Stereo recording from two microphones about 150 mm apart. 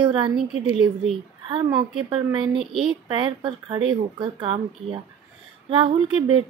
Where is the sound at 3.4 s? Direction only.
30° right (ahead or behind).